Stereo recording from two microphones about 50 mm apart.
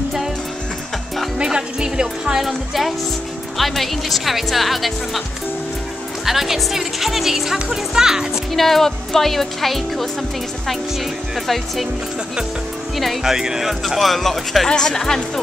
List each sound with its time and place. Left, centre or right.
1.4 s speech: centre
2.4 s speech: centre
6.2 s speech: centre
8.5 s speech: centre
11.3 s speech: centre
12.9 s speech: centre
13.2 s speech: centre
14.7 s speech: centre